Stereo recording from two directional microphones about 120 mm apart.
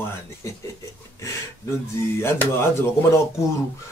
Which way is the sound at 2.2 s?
20° left (ahead or behind).